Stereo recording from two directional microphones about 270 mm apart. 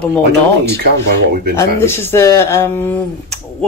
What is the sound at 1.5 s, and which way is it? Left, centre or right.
Speech, centre.